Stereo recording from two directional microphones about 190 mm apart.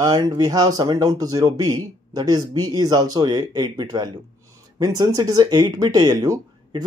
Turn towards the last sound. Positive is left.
turn(degrees=-20)  # may be behind; listen again after turning